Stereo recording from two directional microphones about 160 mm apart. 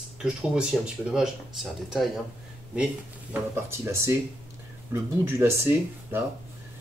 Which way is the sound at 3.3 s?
15° right (ahead or behind).